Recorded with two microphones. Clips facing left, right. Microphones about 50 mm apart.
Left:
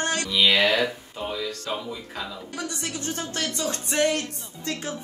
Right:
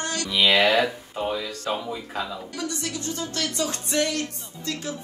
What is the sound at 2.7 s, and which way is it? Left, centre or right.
Speech, left.